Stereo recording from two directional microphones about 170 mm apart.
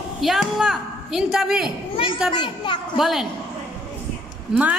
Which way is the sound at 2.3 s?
25° left (ahead or behind).